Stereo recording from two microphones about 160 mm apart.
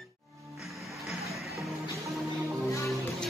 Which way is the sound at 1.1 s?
Centre (ahead or behind).